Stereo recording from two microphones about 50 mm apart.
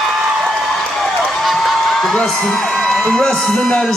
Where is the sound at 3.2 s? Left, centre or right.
Centre.